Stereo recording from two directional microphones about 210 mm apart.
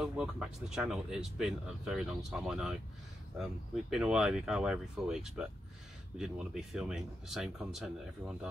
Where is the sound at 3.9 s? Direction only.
5° right (ahead or behind).